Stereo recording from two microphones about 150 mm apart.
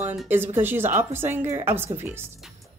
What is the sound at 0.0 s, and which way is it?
Speech, 15° right (ahead or behind).